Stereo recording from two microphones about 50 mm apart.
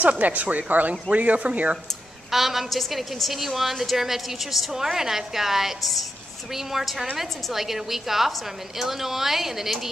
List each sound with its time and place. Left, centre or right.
0.0 s speech: right
2.3 s a woman's voice: centre